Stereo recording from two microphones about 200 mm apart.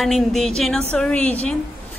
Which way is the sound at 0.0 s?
Centre (ahead or behind).